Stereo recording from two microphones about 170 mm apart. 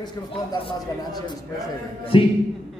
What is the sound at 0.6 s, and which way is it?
A woman's voice, 25° left (ahead or behind).